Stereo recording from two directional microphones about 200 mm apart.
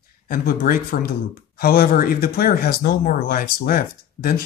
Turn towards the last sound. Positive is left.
turn(degrees=45)  # may be behind; listen again after turning